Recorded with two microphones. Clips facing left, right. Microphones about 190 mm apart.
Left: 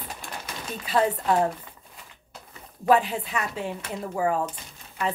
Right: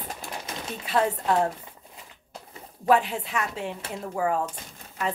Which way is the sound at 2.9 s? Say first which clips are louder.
Left 1 dB; centre (ahead or behind).